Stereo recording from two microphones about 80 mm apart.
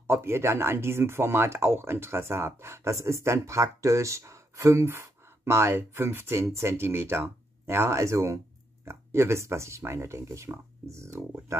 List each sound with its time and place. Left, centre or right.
0.0 s speech: right